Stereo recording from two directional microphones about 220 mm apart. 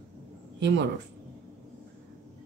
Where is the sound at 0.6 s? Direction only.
55° right (ahead or behind).